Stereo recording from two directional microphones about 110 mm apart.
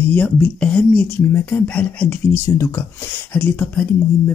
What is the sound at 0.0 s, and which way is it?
A man's voice, 15° left (ahead or behind).